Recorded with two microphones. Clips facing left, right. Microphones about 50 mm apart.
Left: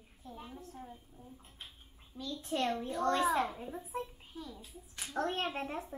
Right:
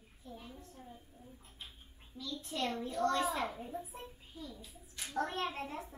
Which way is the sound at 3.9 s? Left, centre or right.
Left.